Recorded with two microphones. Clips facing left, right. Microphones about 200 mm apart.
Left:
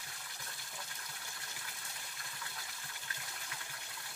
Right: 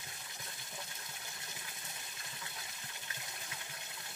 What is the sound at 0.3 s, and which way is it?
Water, 20° right (ahead or behind).